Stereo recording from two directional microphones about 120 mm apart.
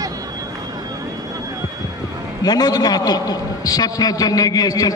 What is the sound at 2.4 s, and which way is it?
A man's voice, 35° left (ahead or behind).